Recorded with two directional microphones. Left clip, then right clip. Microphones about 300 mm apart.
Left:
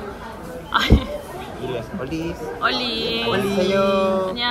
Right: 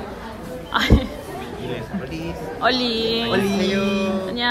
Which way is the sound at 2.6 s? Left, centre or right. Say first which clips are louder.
Right 2 dB; centre.